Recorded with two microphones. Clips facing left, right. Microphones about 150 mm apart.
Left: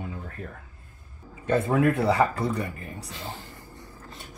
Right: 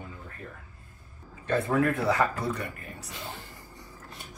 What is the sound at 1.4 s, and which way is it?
Speech, 20° left (ahead or behind).